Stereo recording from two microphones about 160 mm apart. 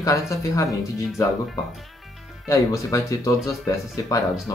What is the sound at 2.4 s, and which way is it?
Speech, 20° left (ahead or behind).